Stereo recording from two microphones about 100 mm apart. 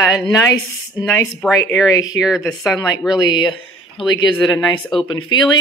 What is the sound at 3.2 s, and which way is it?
Speech, 45° left (ahead or behind).